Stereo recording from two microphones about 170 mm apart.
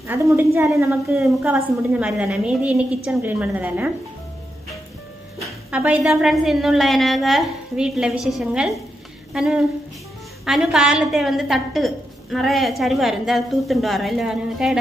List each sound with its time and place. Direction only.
0.0 s a woman's voice: 15° right (ahead or behind)
1.2 s a woman's voice: 5° right (ahead or behind)
5.4 s a woman's voice: 10° right (ahead or behind)
9.3 s a sound: 5° right (ahead or behind)
10.4 s a woman's voice: 5° right (ahead or behind)